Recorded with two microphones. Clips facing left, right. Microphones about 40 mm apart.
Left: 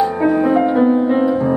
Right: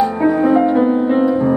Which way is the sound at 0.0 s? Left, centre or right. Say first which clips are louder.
Right 1 dB; centre.